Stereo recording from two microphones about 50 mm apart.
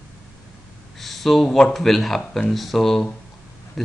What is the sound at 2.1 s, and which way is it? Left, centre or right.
Speech, centre.